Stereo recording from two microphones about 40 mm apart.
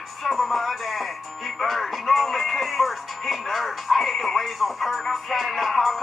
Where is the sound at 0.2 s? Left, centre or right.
Centre.